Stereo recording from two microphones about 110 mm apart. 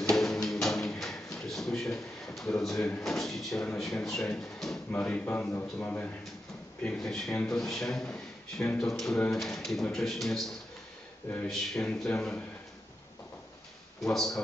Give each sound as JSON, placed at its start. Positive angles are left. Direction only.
{"t": 0.1, "sound": "music", "side_deg": 5}
{"t": 3.0, "sound": "speech", "side_deg": 5}
{"t": 14.0, "sound": "speech", "side_deg": 0}